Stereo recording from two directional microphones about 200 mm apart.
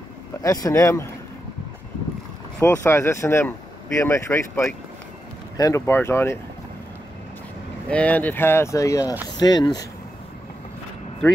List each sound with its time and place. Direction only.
0.4 s speech: 15° left (ahead or behind)
2.6 s speech: 15° left (ahead or behind)
7.9 s speech: 5° left (ahead or behind)